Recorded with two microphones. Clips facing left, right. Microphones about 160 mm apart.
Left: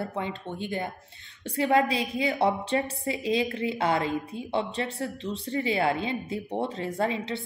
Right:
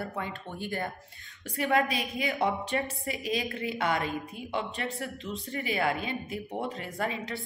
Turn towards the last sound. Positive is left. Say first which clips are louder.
# left 5 dB
turn(degrees=25)  # may be behind; listen again after turning